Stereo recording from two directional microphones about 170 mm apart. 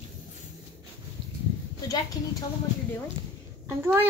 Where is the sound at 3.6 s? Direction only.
15° right (ahead or behind).